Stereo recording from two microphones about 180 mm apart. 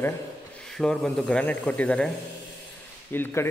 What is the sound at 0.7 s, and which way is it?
Speech, 5° left (ahead or behind).